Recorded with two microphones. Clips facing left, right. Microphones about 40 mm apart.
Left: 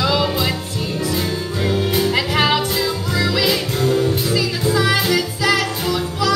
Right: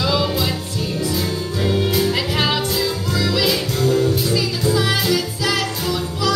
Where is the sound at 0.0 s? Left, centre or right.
Centre.